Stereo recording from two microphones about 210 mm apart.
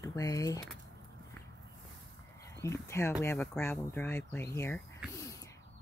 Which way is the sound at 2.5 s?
15° left (ahead or behind).